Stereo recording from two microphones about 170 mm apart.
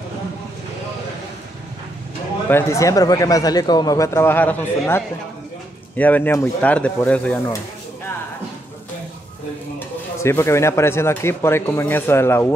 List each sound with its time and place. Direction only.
2.5 s speech: 15° left (ahead or behind)
9.8 s speech: 15° left (ahead or behind)